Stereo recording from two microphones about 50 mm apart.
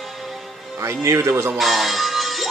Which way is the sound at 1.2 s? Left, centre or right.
Right.